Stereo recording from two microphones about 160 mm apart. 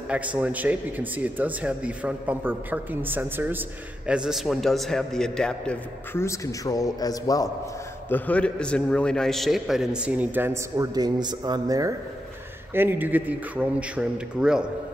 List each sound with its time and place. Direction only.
0.1 s speech: 10° right (ahead or behind)
6.1 s a man's voice: 20° left (ahead or behind)
8.1 s speech: 10° left (ahead or behind)